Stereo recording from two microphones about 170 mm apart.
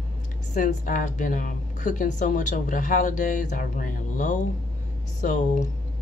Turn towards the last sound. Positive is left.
turn(degrees=45)  # may be behind; listen again after turning